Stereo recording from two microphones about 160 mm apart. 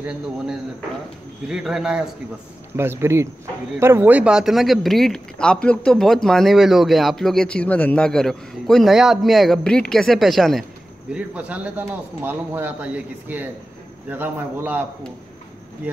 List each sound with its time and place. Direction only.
0.0 s speech: 5° right (ahead or behind)
2.7 s a man's voice: 15° right (ahead or behind)